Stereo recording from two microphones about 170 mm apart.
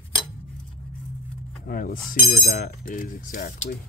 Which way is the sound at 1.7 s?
60° left (ahead or behind).